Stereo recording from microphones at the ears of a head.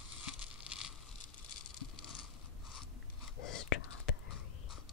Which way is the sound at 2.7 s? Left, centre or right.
Left.